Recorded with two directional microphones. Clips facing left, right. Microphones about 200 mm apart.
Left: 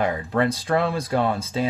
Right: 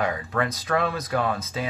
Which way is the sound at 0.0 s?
30° left (ahead or behind).